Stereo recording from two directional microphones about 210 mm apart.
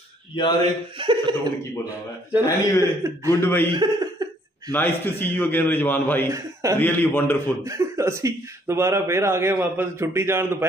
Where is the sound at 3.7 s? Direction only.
20° right (ahead or behind).